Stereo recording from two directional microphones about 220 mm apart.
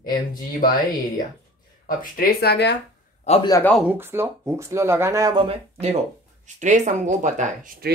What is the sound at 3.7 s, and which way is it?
Speech, 10° right (ahead or behind).